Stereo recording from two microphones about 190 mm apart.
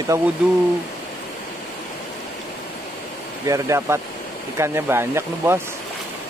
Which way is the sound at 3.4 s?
15° right (ahead or behind).